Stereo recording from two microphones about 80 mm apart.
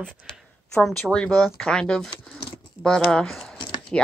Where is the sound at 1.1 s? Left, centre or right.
Centre.